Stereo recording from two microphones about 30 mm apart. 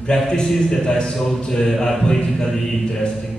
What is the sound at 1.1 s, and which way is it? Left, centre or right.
Speech, centre.